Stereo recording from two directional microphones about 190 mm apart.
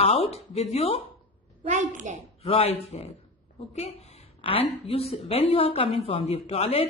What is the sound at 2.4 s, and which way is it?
A woman's voice, 30° left (ahead or behind).